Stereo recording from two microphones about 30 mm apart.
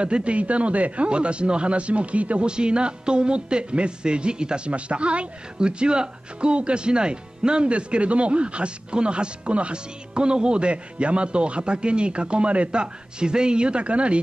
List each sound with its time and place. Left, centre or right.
0.0 s speech: right
1.0 s speech: right
2.4 s speech: right
4.6 s speech: right
12.8 s speech: right